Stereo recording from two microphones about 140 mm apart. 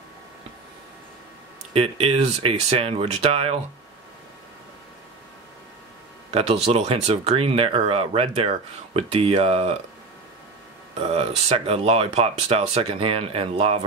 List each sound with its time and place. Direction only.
1.7 s speech: 45° right (ahead or behind)
6.3 s speech: 45° right (ahead or behind)
11.0 s speech: 45° right (ahead or behind)